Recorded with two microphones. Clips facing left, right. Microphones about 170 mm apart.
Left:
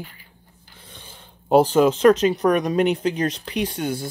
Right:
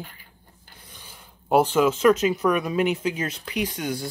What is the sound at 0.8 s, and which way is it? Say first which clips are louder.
Speech: left 4 dB; 25° left (ahead or behind).